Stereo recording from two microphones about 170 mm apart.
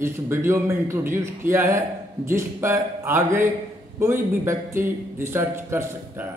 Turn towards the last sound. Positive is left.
turn(degrees=-15)  # may be behind; listen again after turning